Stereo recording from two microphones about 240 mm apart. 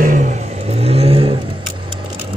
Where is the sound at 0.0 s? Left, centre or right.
Right.